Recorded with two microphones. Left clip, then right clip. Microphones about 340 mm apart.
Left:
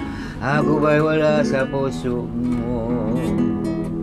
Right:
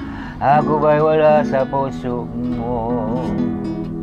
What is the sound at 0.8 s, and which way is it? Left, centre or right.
Speech, right.